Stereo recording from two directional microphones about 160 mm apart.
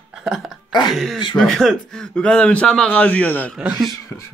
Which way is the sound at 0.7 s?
25° left (ahead or behind).